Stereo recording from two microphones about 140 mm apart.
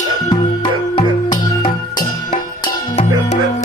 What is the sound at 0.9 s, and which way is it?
Music, 30° left (ahead or behind).